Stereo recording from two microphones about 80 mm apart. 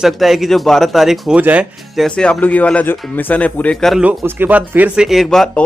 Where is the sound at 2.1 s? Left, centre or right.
Centre.